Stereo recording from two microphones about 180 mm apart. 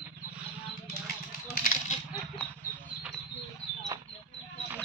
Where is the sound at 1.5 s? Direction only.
45° left (ahead or behind).